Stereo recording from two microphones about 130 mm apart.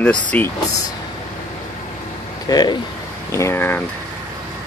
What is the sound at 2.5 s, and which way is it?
Speech, 30° left (ahead or behind).